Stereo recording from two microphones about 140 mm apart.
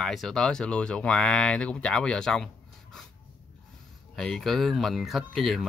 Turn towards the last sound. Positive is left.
turn(degrees=0)  # may be behind; listen again after turning